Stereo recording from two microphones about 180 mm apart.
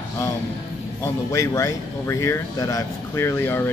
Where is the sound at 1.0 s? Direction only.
15° left (ahead or behind).